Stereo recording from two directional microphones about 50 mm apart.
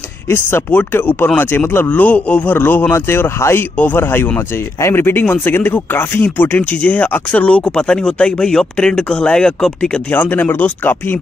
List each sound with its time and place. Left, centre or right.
0.3 s speech: left
2.5 s speech: left; by 9.8 s centre
10.1 s speech: left